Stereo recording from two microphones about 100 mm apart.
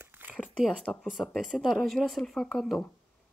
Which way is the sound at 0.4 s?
Centre (ahead or behind).